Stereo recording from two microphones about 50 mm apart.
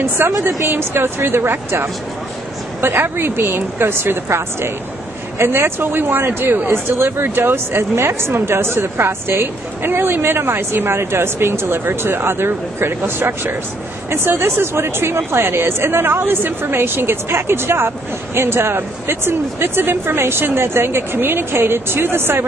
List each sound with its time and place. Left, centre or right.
0.0 s a woman's voice: right